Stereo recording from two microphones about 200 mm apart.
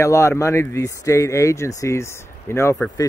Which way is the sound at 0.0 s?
15° left (ahead or behind).